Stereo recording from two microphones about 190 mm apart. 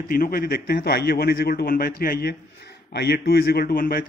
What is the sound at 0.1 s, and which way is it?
A man's voice, 50° left (ahead or behind).